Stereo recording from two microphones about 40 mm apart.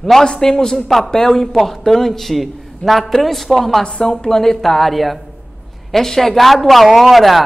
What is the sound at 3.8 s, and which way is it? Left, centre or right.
A woman's voice, centre.